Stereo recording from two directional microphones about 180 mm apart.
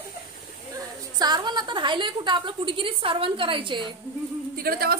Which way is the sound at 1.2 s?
25° right (ahead or behind).